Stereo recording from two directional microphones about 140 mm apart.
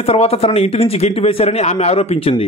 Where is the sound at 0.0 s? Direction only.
45° left (ahead or behind).